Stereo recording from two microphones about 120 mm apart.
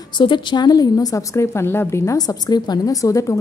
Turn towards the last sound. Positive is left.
turn(degrees=25)  # may be behind; listen again after turning